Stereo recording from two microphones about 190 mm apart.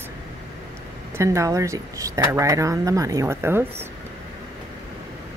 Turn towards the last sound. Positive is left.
turn(degrees=-10)  # may be behind; listen again after turning